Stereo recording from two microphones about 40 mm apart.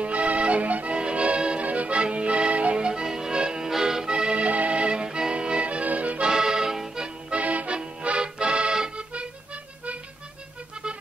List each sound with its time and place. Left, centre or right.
0.0 s music: right
0.9 s music: right
6.3 s music: centre
7.2 s accordion: right